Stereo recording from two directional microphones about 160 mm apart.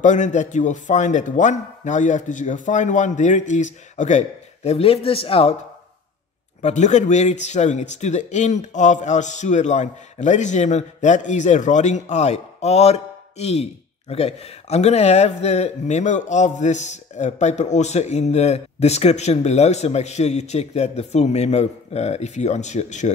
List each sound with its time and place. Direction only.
0.0 s speech: 50° left (ahead or behind)
6.6 s speech: 50° left (ahead or behind)